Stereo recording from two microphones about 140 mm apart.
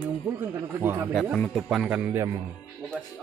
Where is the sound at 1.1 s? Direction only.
5° right (ahead or behind).